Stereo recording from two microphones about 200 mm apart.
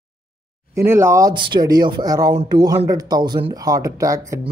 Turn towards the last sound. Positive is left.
turn(degrees=-15)  # may be behind; listen again after turning